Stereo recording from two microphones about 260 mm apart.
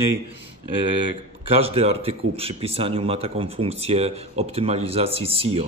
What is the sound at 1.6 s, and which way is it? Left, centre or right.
Speech, right.